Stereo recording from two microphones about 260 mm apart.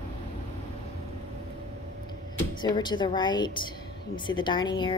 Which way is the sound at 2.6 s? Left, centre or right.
Centre.